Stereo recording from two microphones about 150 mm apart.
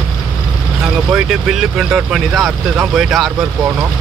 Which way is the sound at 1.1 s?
5° right (ahead or behind).